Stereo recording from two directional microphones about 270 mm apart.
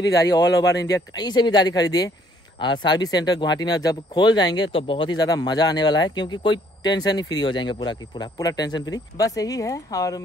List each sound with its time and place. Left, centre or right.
0.1 s speech: centre